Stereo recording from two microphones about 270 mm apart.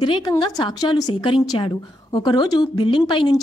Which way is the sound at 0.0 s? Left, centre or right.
Centre.